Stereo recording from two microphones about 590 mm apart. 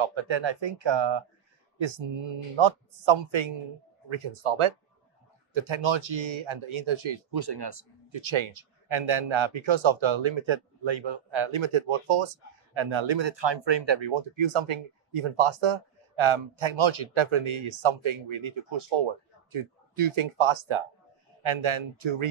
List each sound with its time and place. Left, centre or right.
0.0 s speech: right
7.2 s speech: right